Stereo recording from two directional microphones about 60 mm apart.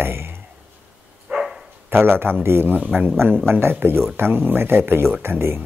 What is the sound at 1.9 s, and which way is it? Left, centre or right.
Speech, right.